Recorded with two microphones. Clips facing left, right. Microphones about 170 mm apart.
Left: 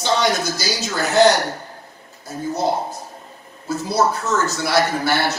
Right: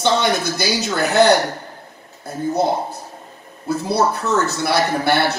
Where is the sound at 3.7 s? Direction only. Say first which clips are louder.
Right 1 dB; 60° right (ahead or behind).